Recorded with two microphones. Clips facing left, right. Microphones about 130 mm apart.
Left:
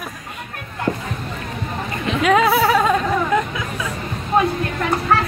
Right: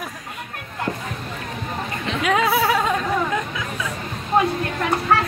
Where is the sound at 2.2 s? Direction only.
80° left.